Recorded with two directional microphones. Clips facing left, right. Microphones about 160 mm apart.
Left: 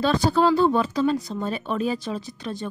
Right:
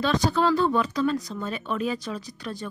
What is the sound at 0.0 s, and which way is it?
Speech, 30° left (ahead or behind).